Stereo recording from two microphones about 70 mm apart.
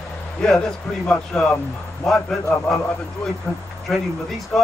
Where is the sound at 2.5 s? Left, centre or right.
Centre.